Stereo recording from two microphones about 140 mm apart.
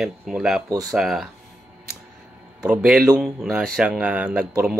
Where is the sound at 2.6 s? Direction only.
10° right (ahead or behind).